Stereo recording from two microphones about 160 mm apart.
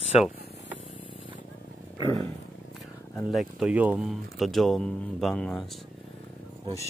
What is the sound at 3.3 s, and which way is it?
Speech, centre (ahead or behind).